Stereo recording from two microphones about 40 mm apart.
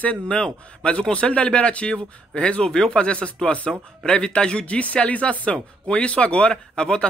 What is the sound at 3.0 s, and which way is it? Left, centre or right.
Speech, left.